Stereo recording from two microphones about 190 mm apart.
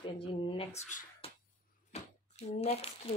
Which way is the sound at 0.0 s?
25° left (ahead or behind).